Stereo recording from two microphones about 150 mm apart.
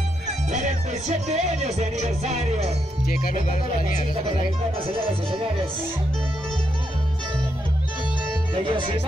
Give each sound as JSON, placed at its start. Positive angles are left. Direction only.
{"t": 0.5, "sound": "music", "side_deg": -55}
{"t": 4.4, "sound": "speech", "side_deg": -35}